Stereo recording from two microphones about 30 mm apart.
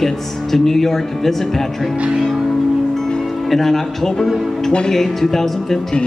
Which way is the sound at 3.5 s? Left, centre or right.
Centre.